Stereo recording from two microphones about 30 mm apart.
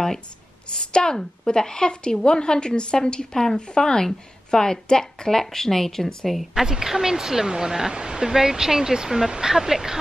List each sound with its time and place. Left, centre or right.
0.7 s speech: left
5.4 s speech: centre
6.5 s a woman's voice: centre